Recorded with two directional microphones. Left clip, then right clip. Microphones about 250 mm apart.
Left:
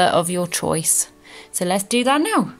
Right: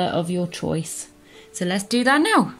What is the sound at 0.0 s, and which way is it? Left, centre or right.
Speech, left.